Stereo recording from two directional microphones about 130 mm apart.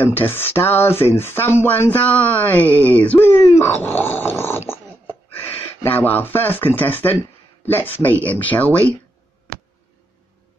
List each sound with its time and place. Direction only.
0.0 s speech: 15° left (ahead or behind)